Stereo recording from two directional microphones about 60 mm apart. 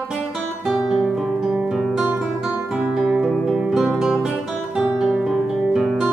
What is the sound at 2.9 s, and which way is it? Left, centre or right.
Music, centre.